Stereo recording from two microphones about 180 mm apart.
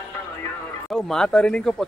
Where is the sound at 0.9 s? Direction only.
5° left (ahead or behind).